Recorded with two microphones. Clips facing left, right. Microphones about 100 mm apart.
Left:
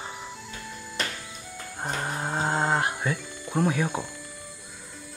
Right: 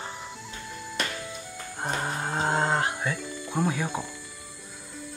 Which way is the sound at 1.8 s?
5° right (ahead or behind).